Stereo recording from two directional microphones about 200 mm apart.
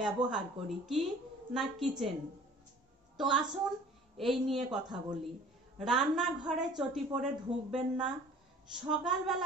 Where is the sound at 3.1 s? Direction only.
Centre (ahead or behind).